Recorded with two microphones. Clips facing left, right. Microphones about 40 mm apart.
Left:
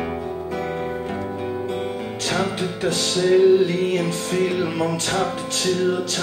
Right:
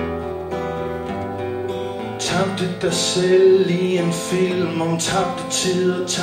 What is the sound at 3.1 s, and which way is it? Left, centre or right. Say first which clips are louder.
Music: right 2 dB; centre.